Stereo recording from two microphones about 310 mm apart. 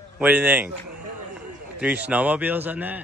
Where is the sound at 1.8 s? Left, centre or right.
Centre.